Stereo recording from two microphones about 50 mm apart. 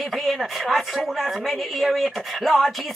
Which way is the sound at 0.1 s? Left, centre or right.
Centre.